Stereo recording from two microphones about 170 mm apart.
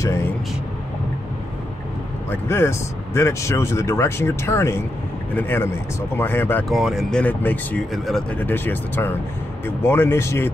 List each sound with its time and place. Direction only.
2.4 s speech: 15° left (ahead or behind)
6.7 s speech: centre (ahead or behind); by 10.5 s 15° left (ahead or behind)